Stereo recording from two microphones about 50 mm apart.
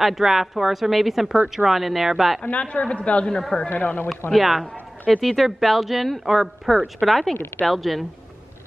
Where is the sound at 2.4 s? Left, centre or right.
Left.